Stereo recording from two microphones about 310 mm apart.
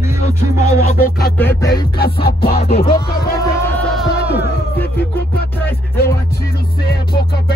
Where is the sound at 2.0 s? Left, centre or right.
Left.